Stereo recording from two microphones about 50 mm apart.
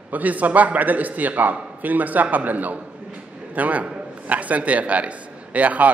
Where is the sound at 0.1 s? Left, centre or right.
Right.